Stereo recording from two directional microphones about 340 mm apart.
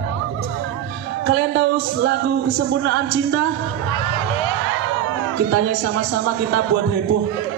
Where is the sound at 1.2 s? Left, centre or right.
Right.